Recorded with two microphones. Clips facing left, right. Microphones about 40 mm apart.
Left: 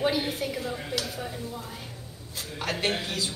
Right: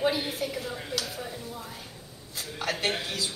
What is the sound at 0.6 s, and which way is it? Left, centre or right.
Speech, left.